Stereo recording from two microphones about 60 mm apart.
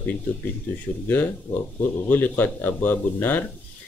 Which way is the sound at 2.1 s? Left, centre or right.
Left.